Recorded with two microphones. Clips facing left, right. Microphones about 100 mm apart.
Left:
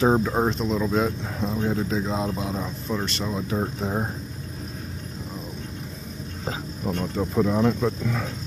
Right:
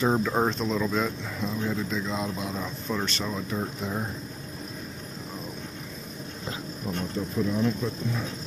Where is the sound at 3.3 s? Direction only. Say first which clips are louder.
Left 4 dB; 30° left (ahead or behind).